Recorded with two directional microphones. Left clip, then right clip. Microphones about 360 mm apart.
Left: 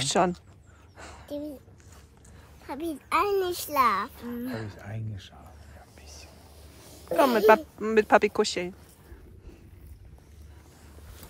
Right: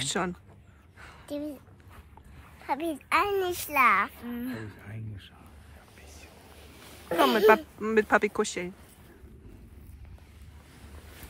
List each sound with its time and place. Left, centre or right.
0.0 s speech: centre
0.9 s a sound: centre
2.7 s a child's voice: centre
4.7 s speech: left
7.2 s speech: centre